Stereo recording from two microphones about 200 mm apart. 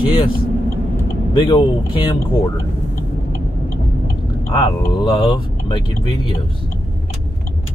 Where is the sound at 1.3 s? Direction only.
25° left (ahead or behind).